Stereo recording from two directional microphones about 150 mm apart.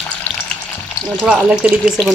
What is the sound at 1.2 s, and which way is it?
Speech, 5° right (ahead or behind).